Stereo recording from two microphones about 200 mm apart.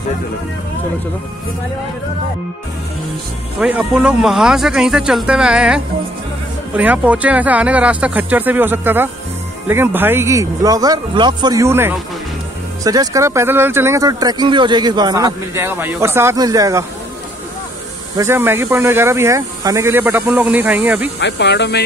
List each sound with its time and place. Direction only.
3.5 s speech: 5° right (ahead or behind)
18.1 s speech: 15° right (ahead or behind)
21.2 s speech: 60° left (ahead or behind)